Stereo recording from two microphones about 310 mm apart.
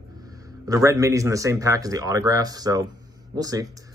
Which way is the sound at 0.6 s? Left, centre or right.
Centre.